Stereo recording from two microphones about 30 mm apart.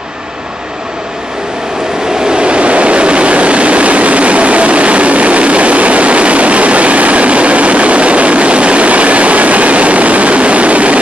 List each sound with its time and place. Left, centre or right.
2.1 s vehicle: right